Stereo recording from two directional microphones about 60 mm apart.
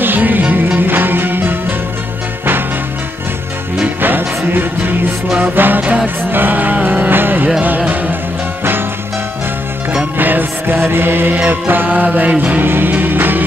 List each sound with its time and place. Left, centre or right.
0.0 s music: right
3.8 s music: right
6.3 s a sound: right
7.6 s music: right
10.1 s music: right